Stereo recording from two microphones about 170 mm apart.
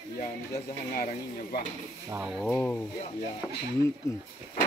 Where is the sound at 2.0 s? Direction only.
15° right (ahead or behind).